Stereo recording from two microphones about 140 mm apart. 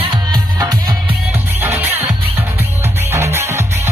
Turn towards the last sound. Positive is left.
turn(degrees=-20)  # may be behind; listen again after turning